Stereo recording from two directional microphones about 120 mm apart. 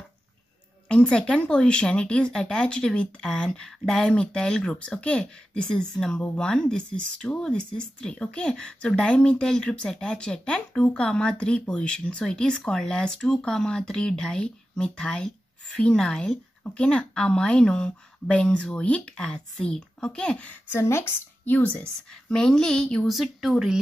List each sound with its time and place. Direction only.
0.8 s speech: 10° left (ahead or behind)
20.7 s a woman's voice: 20° left (ahead or behind); by 23.8 s centre (ahead or behind)